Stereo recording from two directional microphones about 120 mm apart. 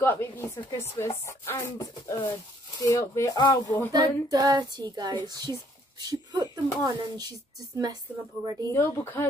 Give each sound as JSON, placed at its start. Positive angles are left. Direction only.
{"t": 0.0, "sound": "speech", "side_deg": 20}
{"t": 3.3, "sound": "speech", "side_deg": 40}
{"t": 3.9, "sound": "speech", "side_deg": -35}
{"t": 8.7, "sound": "speech", "side_deg": 20}